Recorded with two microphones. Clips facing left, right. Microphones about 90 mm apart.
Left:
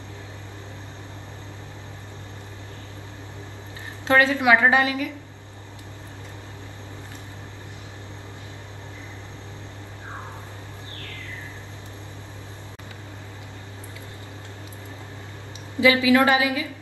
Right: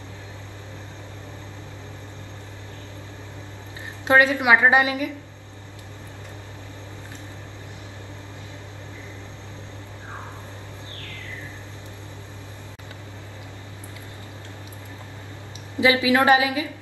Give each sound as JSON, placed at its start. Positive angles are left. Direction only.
{"t": 4.1, "sound": "a woman's voice", "side_deg": -20}
{"t": 15.8, "sound": "a woman's voice", "side_deg": -25}